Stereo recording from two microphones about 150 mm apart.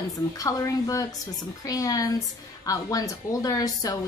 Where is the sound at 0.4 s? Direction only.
25° left (ahead or behind).